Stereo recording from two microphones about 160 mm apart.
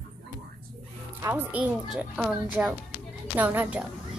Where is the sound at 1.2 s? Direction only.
15° right (ahead or behind).